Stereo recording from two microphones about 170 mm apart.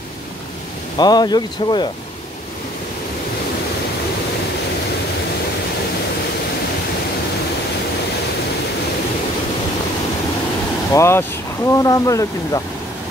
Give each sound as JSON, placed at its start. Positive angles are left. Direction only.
{"t": 0.9, "sound": "speech", "side_deg": 25}
{"t": 10.9, "sound": "speech", "side_deg": 15}